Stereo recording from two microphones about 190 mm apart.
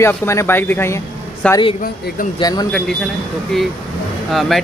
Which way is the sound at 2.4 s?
20° left (ahead or behind).